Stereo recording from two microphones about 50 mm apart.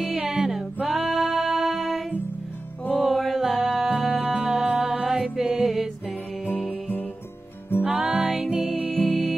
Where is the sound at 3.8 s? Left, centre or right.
Right.